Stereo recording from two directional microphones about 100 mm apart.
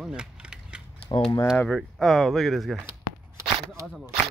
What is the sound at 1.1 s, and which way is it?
Speech, 50° left (ahead or behind).